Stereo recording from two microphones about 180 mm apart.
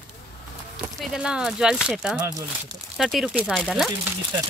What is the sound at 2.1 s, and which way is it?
Speech, 20° right (ahead or behind).